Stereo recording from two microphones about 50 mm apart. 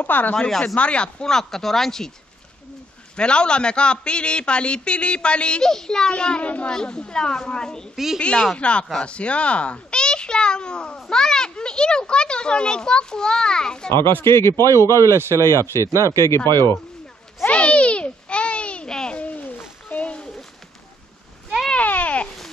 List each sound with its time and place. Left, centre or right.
0.0 s speech: left
0.4 s a child's voice: centre
1.2 s a child's voice: centre
3.2 s a man's voice: centre
5.6 s a child's voice: centre
7.9 s a woman's voice: centre
8.2 s a man's voice: centre
14.2 s a man's voice: left
14.9 s speech: right
16.3 s a man's voice: left
17.5 s a sound: left
19.1 s a sound: left
21.7 s a sound: left